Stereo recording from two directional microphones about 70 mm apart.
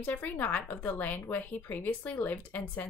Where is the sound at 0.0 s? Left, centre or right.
Left.